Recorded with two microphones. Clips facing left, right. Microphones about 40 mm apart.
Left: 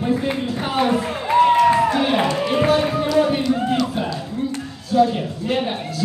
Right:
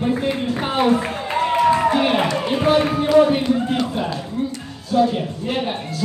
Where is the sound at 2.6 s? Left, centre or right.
Right.